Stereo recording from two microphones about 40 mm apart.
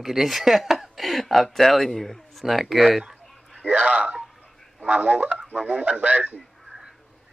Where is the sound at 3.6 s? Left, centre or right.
Right.